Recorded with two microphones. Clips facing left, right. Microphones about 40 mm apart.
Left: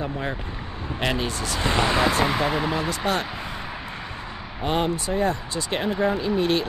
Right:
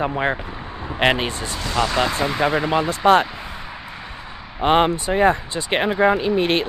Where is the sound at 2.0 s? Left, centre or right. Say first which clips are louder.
Right 1 dB; centre.